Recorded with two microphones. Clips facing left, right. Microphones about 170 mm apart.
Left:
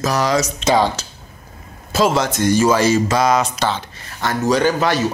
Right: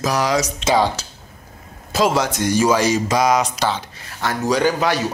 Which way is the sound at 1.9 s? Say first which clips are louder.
Left 1 dB; 10° right (ahead or behind).